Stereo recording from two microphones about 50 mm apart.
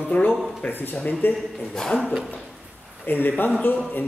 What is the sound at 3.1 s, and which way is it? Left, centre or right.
Speech, left.